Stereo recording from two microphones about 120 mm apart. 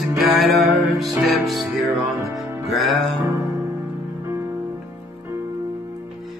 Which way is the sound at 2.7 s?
Centre (ahead or behind).